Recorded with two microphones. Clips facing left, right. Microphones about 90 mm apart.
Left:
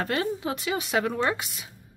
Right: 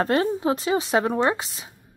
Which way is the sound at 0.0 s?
35° right (ahead or behind).